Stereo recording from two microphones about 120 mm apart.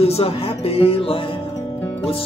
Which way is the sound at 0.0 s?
55° left (ahead or behind).